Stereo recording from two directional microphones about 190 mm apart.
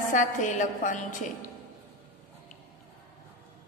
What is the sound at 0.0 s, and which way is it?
A woman's voice, 40° left (ahead or behind).